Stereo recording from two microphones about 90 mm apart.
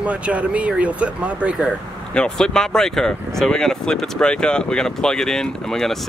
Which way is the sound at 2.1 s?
10° left (ahead or behind).